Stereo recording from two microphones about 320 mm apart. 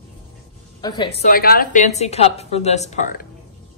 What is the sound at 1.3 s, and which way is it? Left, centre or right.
A woman's voice, left.